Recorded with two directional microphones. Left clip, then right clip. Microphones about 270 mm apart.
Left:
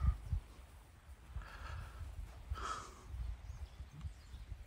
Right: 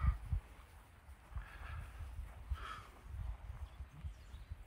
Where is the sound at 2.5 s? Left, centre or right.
Centre.